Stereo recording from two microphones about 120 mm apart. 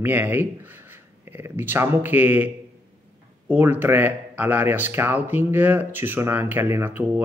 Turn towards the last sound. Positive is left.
turn(degrees=-15)  # may be behind; listen again after turning